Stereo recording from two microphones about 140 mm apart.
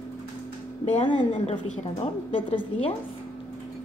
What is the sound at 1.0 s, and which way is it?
Speech, 35° left (ahead or behind).